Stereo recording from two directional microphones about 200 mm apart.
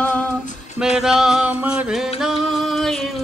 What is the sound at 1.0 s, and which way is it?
Music, 5° right (ahead or behind).